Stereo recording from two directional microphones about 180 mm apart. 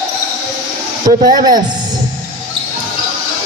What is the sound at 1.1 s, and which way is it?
Speech, 25° right (ahead or behind).